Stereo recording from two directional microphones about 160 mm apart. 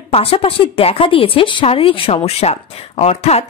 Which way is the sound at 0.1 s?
35° left (ahead or behind).